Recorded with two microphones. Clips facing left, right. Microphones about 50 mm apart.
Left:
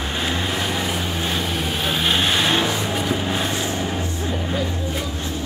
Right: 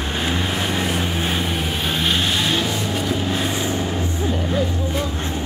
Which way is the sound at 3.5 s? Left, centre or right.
Centre.